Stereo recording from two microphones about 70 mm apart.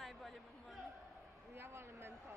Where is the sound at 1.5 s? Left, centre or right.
Right.